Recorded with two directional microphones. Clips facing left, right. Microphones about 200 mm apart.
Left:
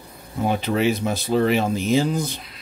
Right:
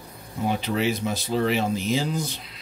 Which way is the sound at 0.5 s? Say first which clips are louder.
Left 4 dB; 55° left (ahead or behind).